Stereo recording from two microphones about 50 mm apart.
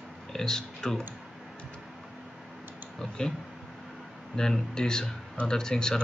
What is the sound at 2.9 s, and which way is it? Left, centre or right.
Speech, centre.